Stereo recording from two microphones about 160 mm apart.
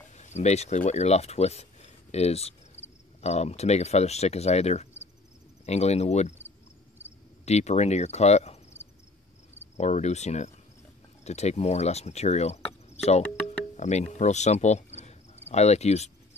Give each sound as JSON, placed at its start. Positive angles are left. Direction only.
{"t": 0.1, "sound": "speech", "side_deg": 45}
{"t": 7.4, "sound": "speech", "side_deg": 45}
{"t": 9.8, "sound": "speech", "side_deg": 45}